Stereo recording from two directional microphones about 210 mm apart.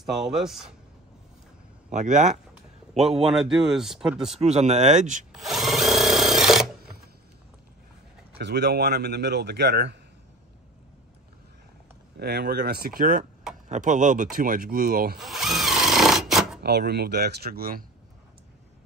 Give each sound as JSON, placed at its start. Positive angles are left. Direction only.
{"t": 0.1, "sound": "speech", "side_deg": 0}
{"t": 1.9, "sound": "a man's voice", "side_deg": -35}
{"t": 3.3, "sound": "speech", "side_deg": 0}
{"t": 4.4, "sound": "speech", "side_deg": -30}
{"t": 5.3, "sound": "drill", "side_deg": 0}
{"t": 8.4, "sound": "a man's voice", "side_deg": -55}
{"t": 12.2, "sound": "a man's voice", "side_deg": -50}
{"t": 15.1, "sound": "tools", "side_deg": 0}
{"t": 16.6, "sound": "a man's voice", "side_deg": -50}